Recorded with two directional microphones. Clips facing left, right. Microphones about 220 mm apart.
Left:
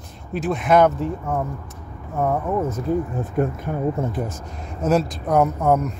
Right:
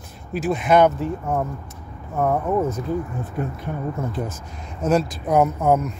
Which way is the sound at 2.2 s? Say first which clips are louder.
Right 1 dB; centre (ahead or behind).